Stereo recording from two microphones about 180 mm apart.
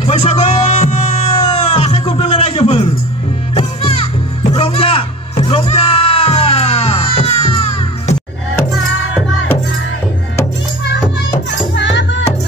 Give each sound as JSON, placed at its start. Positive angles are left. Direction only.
{"t": 0.0, "sound": "music", "side_deg": 40}
{"t": 11.7, "sound": "music", "side_deg": 80}